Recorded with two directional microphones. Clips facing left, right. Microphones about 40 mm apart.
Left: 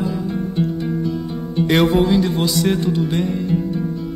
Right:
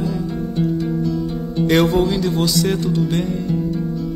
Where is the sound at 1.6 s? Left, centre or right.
Centre.